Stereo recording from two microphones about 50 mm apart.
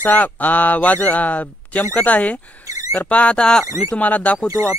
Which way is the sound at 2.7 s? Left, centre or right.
Right.